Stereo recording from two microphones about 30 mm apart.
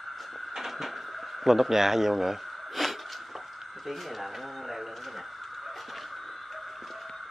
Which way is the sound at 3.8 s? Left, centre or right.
Centre.